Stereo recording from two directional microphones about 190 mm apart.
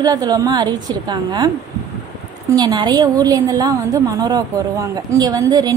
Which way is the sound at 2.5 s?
20° right (ahead or behind).